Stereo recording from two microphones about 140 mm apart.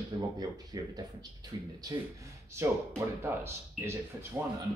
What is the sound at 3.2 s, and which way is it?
Speech, 15° right (ahead or behind).